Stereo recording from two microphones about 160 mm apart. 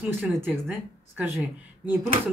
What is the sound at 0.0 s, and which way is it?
Speech, 10° right (ahead or behind).